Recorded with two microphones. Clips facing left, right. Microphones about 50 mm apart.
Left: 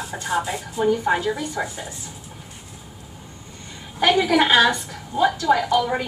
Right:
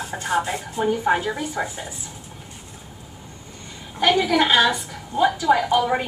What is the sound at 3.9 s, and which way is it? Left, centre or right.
A woman's voice, centre.